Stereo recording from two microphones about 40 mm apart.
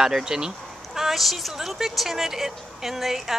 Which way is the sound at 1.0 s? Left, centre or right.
Centre.